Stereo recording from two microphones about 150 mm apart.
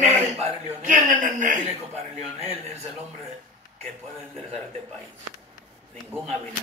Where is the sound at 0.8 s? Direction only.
60° right (ahead or behind).